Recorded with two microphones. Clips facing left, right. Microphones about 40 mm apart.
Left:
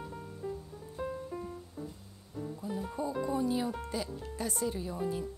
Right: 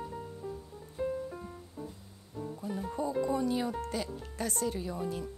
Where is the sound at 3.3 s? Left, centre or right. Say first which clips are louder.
Right 1 dB; right.